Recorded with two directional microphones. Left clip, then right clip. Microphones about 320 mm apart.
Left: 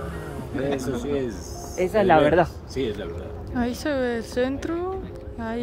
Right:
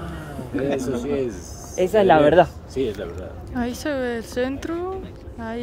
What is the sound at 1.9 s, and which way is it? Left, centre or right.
Speech, right.